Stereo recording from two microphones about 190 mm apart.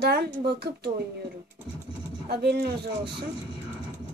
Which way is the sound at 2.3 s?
60° right (ahead or behind).